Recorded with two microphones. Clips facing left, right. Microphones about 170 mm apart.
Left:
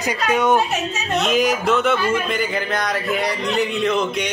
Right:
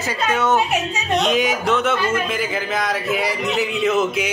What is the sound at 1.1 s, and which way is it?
Speech, centre (ahead or behind).